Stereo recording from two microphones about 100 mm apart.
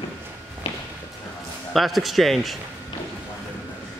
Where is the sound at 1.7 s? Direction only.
Centre (ahead or behind).